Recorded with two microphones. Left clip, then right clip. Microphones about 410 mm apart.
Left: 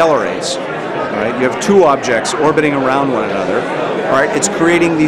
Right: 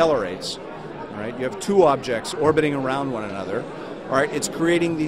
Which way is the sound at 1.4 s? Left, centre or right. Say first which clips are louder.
Left 7 dB; right.